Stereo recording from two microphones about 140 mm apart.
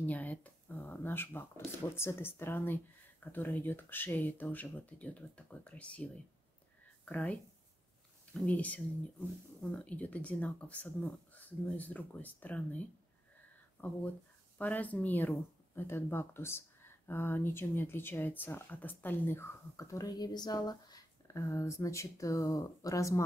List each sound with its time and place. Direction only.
0.0 s speech: 10° left (ahead or behind)
7.1 s speech: 10° left (ahead or behind)